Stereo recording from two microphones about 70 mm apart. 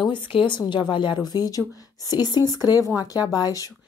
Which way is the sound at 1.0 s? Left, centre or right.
Left.